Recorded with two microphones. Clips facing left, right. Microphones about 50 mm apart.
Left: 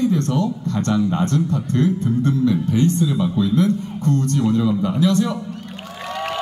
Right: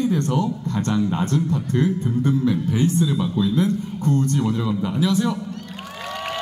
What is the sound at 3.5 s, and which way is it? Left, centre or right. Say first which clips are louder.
Speech: left 3 dB; centre.